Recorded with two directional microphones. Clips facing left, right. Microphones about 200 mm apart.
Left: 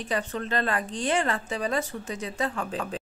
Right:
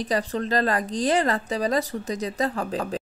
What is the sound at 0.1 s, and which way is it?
A woman's voice, 35° right (ahead or behind).